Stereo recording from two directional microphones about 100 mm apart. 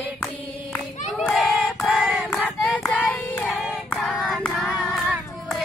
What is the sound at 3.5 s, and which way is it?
Music, centre (ahead or behind).